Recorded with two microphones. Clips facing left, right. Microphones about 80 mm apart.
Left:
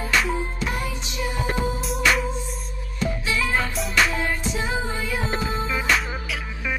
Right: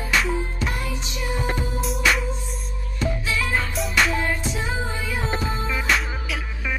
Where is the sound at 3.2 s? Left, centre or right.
Centre.